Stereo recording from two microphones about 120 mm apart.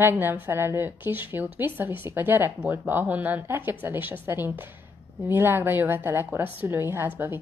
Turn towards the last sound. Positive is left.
turn(degrees=-15)  # may be behind; listen again after turning